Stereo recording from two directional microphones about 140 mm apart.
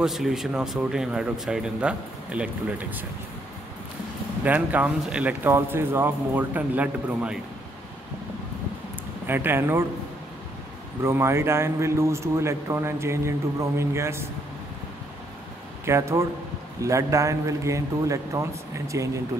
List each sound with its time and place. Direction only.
0.0 s speech: 5° right (ahead or behind)
4.5 s speech: 10° right (ahead or behind)
9.2 s speech: 15° right (ahead or behind)
11.1 s a man's voice: 20° right (ahead or behind)
15.8 s a man's voice: 20° right (ahead or behind)